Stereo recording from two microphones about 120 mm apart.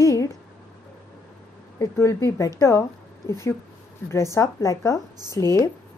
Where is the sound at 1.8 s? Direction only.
25° left (ahead or behind).